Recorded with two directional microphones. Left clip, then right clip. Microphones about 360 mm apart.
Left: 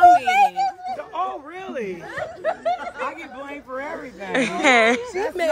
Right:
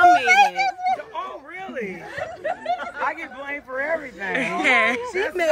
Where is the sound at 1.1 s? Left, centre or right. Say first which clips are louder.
Left 4 dB; left.